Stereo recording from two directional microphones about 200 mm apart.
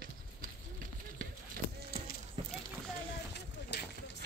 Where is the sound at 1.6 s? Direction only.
45° right (ahead or behind).